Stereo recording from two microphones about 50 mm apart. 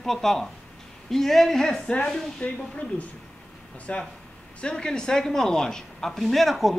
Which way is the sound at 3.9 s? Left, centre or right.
Left.